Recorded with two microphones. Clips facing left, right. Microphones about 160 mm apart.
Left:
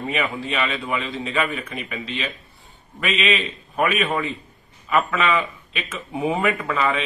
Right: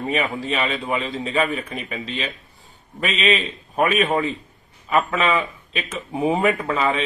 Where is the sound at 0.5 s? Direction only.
35° right (ahead or behind).